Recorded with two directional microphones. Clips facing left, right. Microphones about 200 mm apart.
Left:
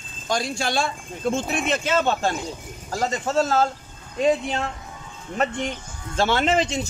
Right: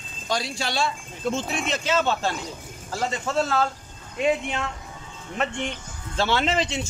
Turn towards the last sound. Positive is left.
turn(degrees=45)  # may be behind; listen again after turning